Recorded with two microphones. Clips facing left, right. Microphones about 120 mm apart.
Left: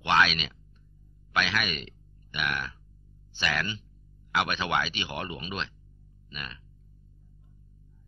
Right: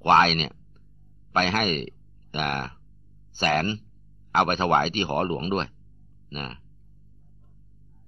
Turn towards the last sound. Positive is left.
turn(degrees=-40)  # may be behind; listen again after turning